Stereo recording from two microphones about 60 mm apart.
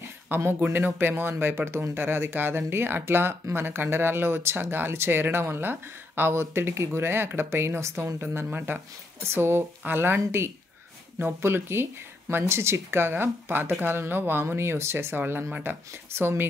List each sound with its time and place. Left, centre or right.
0.6 s speech: right
9.2 s speech: right